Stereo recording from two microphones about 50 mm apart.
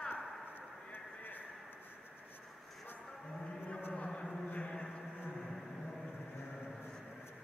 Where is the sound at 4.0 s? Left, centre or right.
Centre.